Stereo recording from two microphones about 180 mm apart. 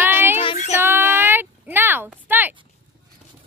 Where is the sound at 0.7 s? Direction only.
10° right (ahead or behind).